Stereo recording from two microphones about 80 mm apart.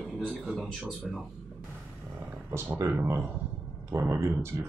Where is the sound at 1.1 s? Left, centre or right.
Centre.